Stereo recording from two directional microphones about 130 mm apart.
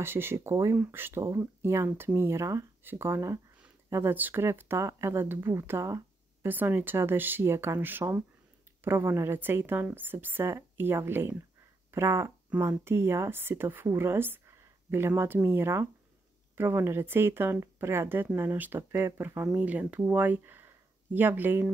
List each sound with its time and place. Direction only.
0.0 s speech: 20° right (ahead or behind)